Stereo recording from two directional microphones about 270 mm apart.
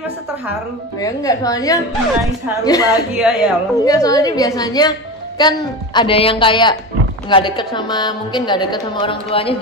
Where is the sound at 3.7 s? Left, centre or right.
Centre.